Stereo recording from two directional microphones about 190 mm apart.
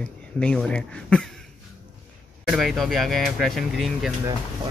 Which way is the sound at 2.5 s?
Centre (ahead or behind).